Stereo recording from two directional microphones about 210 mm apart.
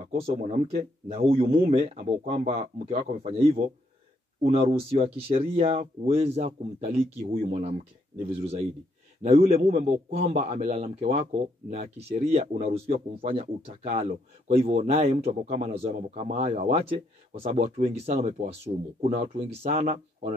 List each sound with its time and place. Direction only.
0.4 s speech: 30° right (ahead or behind)
12.3 s speech: 30° right (ahead or behind)